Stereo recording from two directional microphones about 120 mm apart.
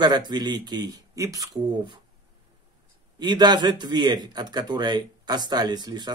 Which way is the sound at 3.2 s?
35° right (ahead or behind).